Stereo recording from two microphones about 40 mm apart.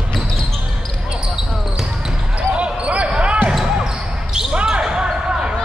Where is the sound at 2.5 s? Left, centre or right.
Right.